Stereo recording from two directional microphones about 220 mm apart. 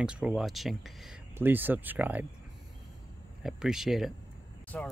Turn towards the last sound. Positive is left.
turn(degrees=5)  # may be behind; listen again after turning